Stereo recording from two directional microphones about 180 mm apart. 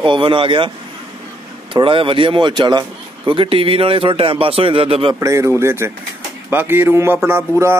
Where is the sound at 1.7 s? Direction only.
30° right (ahead or behind).